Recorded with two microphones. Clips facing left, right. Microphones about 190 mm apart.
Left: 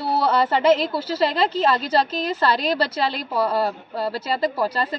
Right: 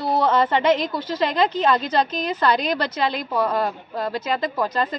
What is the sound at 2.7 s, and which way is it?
A woman's voice, 35° left (ahead or behind).